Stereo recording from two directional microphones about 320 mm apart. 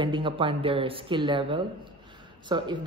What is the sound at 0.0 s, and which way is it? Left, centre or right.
Speech, centre.